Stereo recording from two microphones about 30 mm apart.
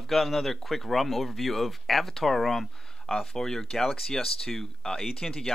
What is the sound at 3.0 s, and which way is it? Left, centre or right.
Speech, left.